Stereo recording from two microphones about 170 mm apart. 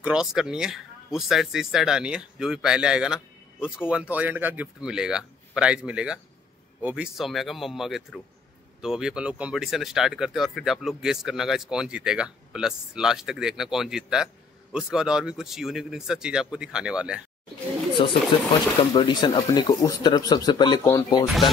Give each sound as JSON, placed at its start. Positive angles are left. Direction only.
{"t": 0.0, "sound": "speech", "side_deg": -5}
{"t": 18.8, "sound": "speech", "side_deg": 30}